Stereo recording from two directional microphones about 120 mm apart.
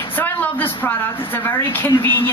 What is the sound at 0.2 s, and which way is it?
A woman's voice, 15° left (ahead or behind).